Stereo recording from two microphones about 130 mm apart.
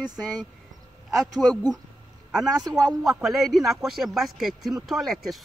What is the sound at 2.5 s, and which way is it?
Speech, 30° right (ahead or behind).